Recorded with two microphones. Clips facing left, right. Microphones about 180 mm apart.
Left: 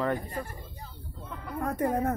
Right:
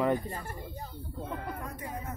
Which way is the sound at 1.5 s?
60° left (ahead or behind).